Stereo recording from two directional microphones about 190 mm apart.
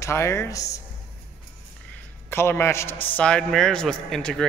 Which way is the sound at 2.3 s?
10° left (ahead or behind).